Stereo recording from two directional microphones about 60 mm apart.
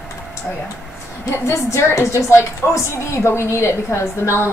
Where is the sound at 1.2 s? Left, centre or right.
Left.